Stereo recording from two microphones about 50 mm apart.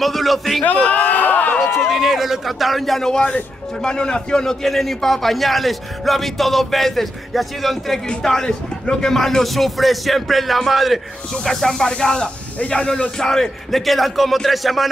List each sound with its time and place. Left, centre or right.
0.0 s speech: centre
0.8 s a sound: left
1.9 s speech: centre
11.4 s speech: centre
13.3 s speech: centre